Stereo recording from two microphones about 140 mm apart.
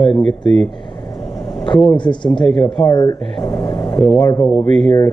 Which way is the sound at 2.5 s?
Centre (ahead or behind).